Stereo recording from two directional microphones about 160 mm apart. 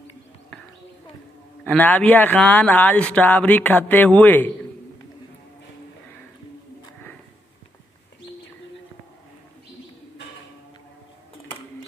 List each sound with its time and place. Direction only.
1.6 s speech: 10° left (ahead or behind)